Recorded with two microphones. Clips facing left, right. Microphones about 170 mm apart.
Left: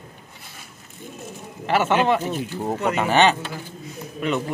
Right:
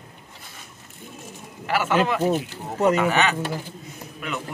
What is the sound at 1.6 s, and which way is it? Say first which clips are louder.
Speech: left 2 dB; 25° left (ahead or behind).